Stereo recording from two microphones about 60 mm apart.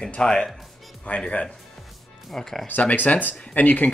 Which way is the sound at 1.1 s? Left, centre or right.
Left.